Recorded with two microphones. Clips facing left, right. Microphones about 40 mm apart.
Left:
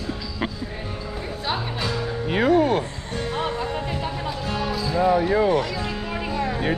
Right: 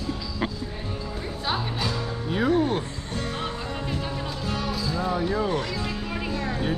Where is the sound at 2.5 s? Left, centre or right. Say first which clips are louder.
Left 5 dB; left.